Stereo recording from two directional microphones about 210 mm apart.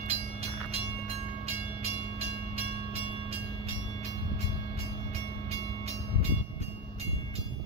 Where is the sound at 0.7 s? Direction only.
30° right (ahead or behind).